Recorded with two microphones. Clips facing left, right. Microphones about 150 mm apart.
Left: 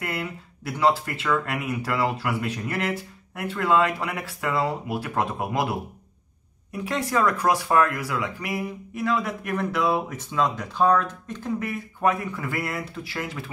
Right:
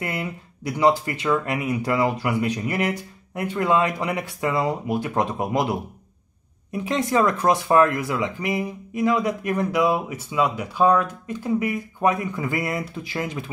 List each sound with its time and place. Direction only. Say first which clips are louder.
0.0 s speech: right 2 dB; 15° right (ahead or behind)